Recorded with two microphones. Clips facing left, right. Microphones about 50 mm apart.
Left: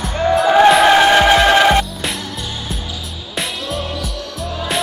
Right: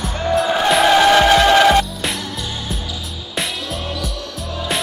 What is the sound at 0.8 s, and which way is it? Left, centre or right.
Music, centre.